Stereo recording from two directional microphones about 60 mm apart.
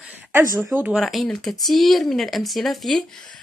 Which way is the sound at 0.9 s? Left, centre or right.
Centre.